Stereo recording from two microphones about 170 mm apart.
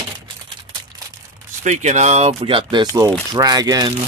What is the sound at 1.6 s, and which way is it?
Speech, 45° right (ahead or behind).